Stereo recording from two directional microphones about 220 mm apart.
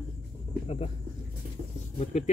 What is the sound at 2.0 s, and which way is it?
Speech, 30° left (ahead or behind).